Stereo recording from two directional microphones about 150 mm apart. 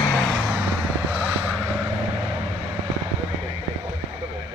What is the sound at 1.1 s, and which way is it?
Vehicle, 10° right (ahead or behind).